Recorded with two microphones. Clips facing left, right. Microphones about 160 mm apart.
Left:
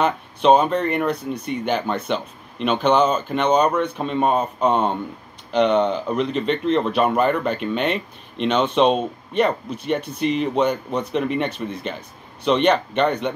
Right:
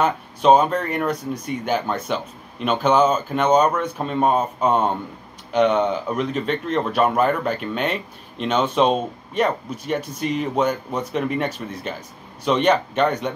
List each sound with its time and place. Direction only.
0.0 s speech: 5° right (ahead or behind)